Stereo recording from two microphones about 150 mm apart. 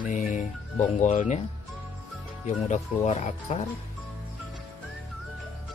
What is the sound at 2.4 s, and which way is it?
Speech, 50° left (ahead or behind).